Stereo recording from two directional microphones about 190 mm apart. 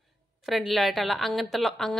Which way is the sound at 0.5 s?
Centre (ahead or behind).